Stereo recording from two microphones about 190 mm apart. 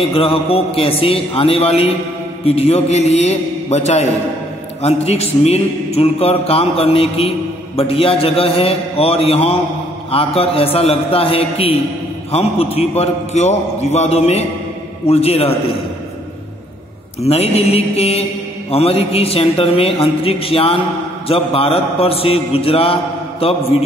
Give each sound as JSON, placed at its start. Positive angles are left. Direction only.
{"t": 0.0, "sound": "a man's voice", "side_deg": 30}
{"t": 17.2, "sound": "a man's voice", "side_deg": 35}